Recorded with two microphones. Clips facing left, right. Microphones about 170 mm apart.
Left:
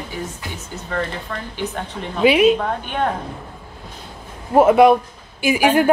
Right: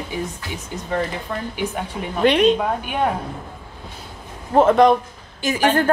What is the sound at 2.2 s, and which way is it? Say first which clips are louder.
Speech: left 2 dB; 5° left (ahead or behind).